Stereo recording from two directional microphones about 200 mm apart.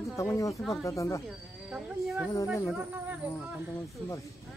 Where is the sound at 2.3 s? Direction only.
15° left (ahead or behind).